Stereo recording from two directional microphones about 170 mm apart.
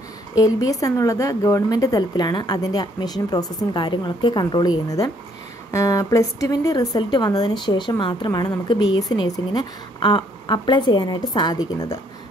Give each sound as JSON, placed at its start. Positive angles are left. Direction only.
{"t": 0.4, "sound": "speech", "side_deg": 20}